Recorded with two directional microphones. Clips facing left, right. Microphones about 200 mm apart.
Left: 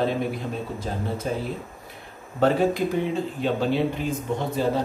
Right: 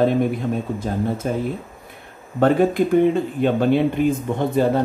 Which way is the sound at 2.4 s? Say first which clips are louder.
Right 4 dB; 55° right (ahead or behind).